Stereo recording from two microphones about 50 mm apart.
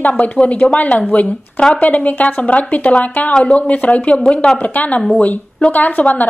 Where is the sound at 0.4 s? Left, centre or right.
Left.